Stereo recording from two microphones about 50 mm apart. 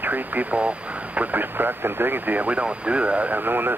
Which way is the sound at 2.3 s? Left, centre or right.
Right.